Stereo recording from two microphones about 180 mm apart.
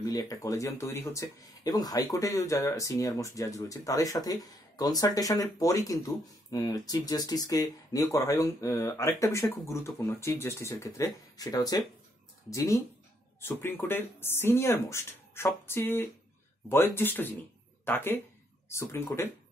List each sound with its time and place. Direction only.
0.0 s speech: 20° left (ahead or behind)